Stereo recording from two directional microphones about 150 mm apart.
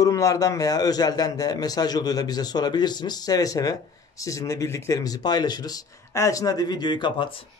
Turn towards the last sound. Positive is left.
turn(degrees=30)  # may be behind; listen again after turning